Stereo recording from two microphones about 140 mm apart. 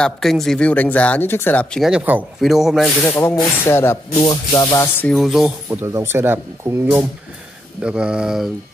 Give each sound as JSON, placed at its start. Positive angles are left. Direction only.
{"t": 0.0, "sound": "speech", "side_deg": 0}
{"t": 1.9, "sound": "speech", "side_deg": -10}
{"t": 3.1, "sound": "a sound", "side_deg": 20}
{"t": 3.6, "sound": "speech", "side_deg": 15}
{"t": 4.3, "sound": "a sound", "side_deg": 25}
{"t": 5.0, "sound": "speech", "side_deg": 0}
{"t": 5.7, "sound": "speech", "side_deg": -20}